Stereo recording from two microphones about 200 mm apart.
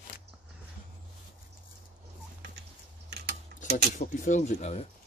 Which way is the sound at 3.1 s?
55° right (ahead or behind).